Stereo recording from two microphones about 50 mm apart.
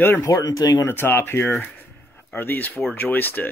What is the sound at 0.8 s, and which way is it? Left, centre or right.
Speech, left.